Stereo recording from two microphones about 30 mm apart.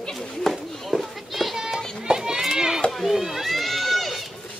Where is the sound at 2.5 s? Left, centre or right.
Centre.